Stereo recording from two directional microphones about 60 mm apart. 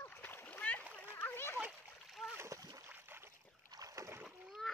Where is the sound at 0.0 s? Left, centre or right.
Left.